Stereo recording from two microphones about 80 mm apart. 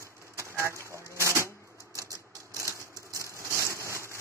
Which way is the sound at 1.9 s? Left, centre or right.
Right.